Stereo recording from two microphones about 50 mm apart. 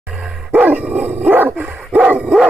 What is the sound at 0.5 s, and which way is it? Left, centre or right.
Dog, right.